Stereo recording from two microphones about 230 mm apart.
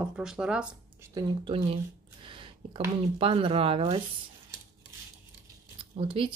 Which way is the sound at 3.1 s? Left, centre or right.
Right.